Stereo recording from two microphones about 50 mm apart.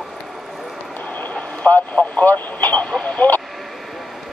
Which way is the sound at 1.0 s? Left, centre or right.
Left.